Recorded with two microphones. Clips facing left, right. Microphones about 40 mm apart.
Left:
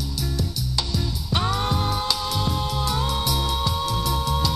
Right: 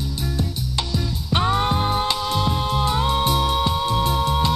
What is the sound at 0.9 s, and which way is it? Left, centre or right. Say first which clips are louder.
Music: right 2 dB; right.